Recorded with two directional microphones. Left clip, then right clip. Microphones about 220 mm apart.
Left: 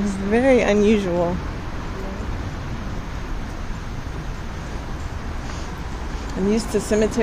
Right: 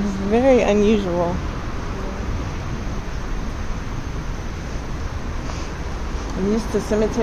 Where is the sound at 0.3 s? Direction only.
5° left (ahead or behind).